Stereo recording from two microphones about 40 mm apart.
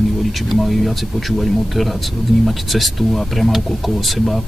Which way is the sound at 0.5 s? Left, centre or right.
Centre.